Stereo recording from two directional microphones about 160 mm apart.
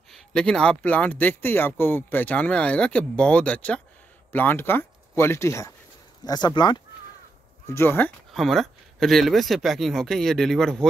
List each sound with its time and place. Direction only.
0.1 s speech: 5° left (ahead or behind); by 6.8 s 30° left (ahead or behind)
7.7 s speech: 15° left (ahead or behind)
8.4 s speech: centre (ahead or behind)